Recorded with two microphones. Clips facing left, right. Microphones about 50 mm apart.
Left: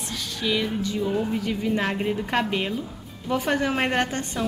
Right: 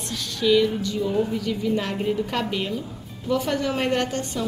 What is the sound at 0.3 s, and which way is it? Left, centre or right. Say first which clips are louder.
A woman's voice: right 7 dB; centre.